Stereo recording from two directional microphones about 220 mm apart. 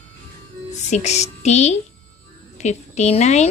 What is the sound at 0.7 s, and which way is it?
A woman's voice, 30° left (ahead or behind).